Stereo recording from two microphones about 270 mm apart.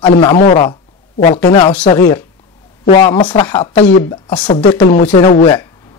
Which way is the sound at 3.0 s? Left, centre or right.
Centre.